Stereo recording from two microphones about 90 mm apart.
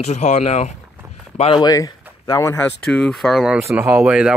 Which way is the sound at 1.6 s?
40° left (ahead or behind).